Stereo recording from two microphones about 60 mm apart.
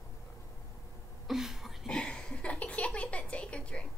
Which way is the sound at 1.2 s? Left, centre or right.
Centre.